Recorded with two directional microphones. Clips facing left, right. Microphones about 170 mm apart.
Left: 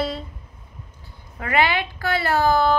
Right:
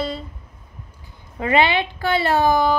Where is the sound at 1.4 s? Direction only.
25° right (ahead or behind).